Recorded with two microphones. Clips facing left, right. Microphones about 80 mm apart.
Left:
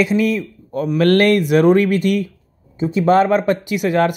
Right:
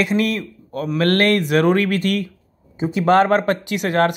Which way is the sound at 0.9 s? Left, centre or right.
Right.